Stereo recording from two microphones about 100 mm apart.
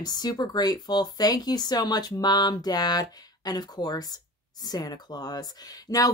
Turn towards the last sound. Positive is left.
turn(degrees=40)  # may be behind; listen again after turning